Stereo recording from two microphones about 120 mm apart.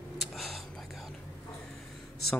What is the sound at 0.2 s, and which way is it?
Whispering, centre (ahead or behind).